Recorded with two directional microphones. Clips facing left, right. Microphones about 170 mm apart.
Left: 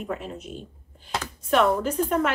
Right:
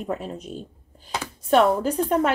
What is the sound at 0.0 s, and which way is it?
A woman's voice, 35° right (ahead or behind).